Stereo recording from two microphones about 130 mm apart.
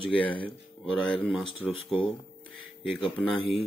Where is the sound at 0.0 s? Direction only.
40° left (ahead or behind).